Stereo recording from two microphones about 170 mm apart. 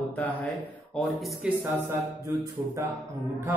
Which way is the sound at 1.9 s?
20° right (ahead or behind).